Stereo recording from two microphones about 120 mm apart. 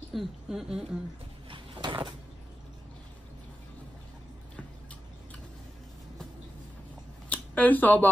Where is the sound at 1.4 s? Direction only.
45° right (ahead or behind).